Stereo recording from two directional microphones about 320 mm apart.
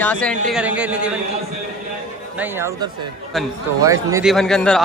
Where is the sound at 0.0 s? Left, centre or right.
Centre.